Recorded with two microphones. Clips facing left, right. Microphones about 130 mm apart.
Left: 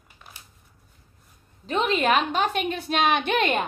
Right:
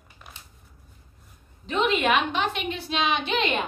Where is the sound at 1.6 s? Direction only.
40° left (ahead or behind).